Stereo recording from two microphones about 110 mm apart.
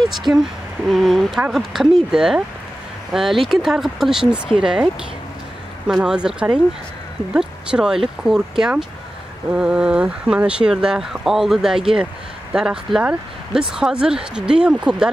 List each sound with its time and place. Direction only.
0.3 s speech: 25° right (ahead or behind)
0.8 s speech: centre (ahead or behind)
5.9 s speech: 5° right (ahead or behind)